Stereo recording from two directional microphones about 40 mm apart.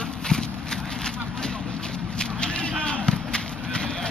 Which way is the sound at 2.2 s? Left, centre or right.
Left.